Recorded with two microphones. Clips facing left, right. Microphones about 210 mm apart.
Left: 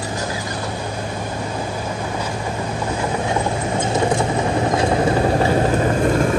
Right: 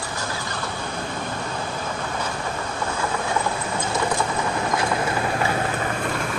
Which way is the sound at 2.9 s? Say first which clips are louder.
Left 4 dB; 20° left (ahead or behind).